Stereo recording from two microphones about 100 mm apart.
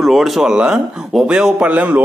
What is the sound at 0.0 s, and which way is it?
A man's voice, centre (ahead or behind).